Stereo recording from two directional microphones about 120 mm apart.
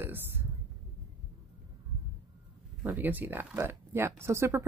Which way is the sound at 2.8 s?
15° right (ahead or behind).